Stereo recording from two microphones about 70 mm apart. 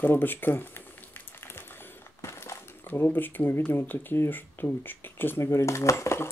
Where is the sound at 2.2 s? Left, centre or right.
Left.